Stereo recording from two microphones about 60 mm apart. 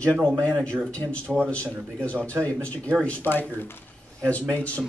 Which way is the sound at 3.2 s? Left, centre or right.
Left.